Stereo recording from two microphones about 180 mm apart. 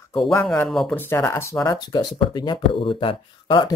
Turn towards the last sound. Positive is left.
turn(degrees=25)  # may be behind; listen again after turning